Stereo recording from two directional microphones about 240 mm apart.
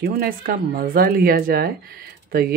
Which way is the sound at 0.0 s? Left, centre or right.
Right.